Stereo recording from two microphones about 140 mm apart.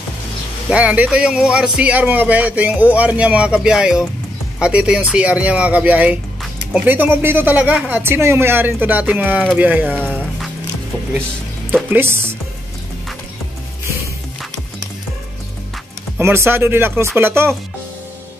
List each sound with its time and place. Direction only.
0.7 s a man's voice: 10° right (ahead or behind)
9.8 s speech: 10° left (ahead or behind)
11.9 s a man's voice: 15° right (ahead or behind)
16.2 s a man's voice: 15° right (ahead or behind)